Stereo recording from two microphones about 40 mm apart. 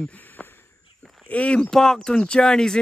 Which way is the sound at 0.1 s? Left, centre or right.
Left.